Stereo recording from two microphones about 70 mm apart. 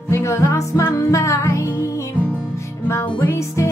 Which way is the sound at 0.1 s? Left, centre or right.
Left.